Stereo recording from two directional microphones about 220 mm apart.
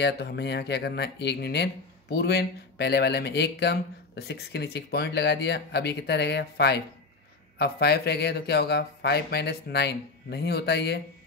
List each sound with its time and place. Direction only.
0.0 s speech: 50° left (ahead or behind)